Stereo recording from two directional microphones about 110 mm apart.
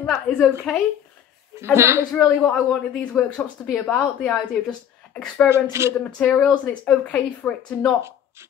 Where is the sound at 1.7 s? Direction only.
25° right (ahead or behind).